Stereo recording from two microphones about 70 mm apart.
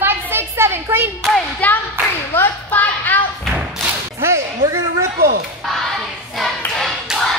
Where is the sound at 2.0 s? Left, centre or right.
Right.